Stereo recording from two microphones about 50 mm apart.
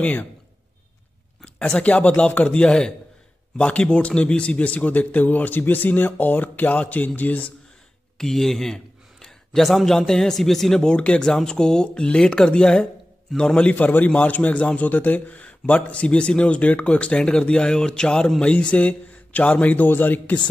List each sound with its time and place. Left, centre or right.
0.0 s a man's voice: left
1.8 s a man's voice: left
8.2 s speech: centre
10.8 s a man's voice: left